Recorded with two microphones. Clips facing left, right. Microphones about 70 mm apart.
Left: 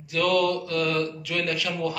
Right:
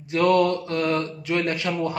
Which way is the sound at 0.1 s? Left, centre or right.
Right.